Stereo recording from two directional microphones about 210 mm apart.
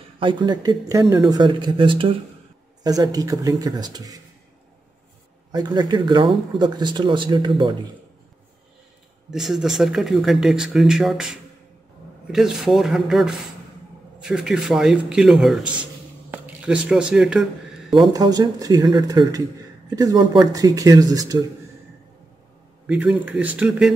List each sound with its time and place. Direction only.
0.2 s speech: 20° right (ahead or behind)
5.5 s speech: 20° right (ahead or behind)
9.3 s speech: centre (ahead or behind)
16.3 s a sound: 5° right (ahead or behind)
17.9 s speech: 20° right (ahead or behind)
22.8 s speech: 5° right (ahead or behind)